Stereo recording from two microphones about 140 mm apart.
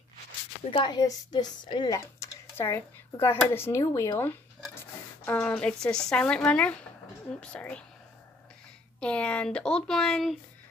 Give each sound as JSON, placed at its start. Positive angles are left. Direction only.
{"t": 0.7, "sound": "a woman's voice", "side_deg": 35}
{"t": 2.0, "sound": "speech", "side_deg": 20}
{"t": 9.0, "sound": "speech", "side_deg": 10}